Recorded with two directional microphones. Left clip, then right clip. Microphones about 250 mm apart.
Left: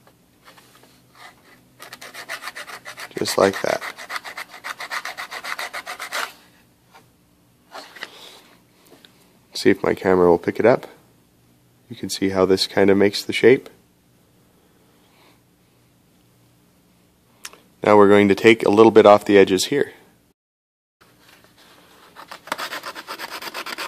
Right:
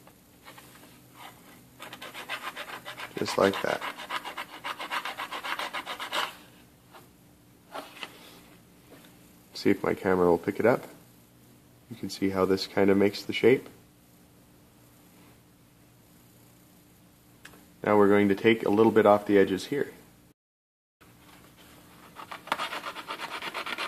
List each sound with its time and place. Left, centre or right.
1.9 s rub: centre
3.3 s speech: left
5.4 s rub: centre
9.5 s speech: left
11.9 s speech: left
17.4 s speech: left
22.3 s rub: centre